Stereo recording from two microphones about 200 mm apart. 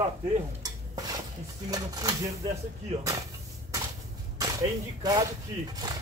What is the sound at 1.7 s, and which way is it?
Speech, 20° right (ahead or behind).